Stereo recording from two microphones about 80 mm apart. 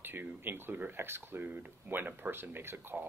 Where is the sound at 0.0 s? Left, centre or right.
Right.